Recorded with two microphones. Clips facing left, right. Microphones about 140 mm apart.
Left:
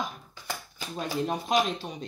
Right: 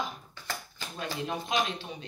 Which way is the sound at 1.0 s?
35° left (ahead or behind).